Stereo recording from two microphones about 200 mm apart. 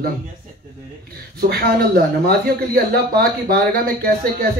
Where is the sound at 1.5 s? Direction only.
50° right (ahead or behind).